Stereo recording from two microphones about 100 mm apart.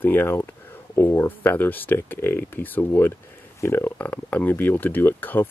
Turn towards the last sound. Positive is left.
turn(degrees=20)  # may be behind; listen again after turning